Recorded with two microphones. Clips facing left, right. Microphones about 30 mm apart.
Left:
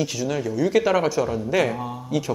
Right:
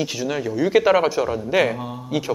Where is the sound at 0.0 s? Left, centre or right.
Centre.